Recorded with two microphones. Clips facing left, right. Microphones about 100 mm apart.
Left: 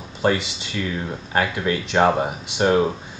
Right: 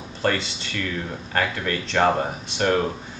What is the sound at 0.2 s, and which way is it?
Speech, 15° left (ahead or behind).